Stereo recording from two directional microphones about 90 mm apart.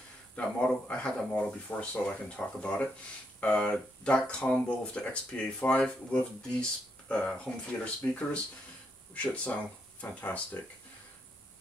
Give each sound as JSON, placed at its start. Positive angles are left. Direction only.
{"t": 0.4, "sound": "speech", "side_deg": 10}